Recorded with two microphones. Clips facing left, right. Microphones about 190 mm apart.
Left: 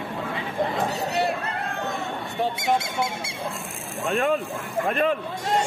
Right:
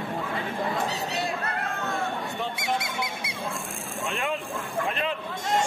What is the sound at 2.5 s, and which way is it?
Squeak, 25° left (ahead or behind).